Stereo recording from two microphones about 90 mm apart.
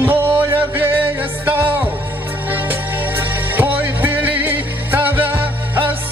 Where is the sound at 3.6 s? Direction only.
20° right (ahead or behind).